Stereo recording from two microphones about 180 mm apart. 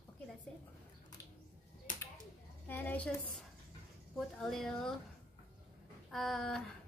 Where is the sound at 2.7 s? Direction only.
10° left (ahead or behind).